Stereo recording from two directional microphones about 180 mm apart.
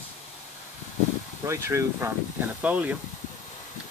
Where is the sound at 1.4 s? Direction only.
15° right (ahead or behind).